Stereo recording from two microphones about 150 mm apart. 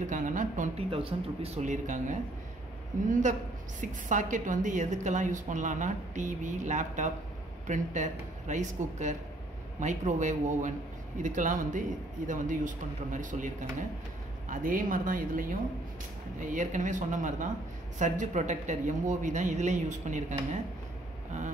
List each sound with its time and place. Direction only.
0.0 s a woman's voice: 55° right (ahead or behind)
0.7 s a woman's voice: 40° right (ahead or behind)